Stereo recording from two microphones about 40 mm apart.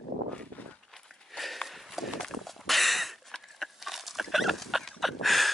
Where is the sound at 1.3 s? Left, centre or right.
Centre.